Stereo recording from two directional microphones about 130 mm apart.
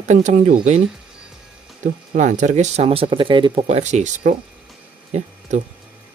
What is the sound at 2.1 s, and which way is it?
Speech, 70° right (ahead or behind).